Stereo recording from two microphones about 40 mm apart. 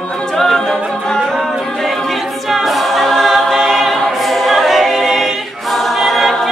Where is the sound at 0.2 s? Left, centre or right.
Centre.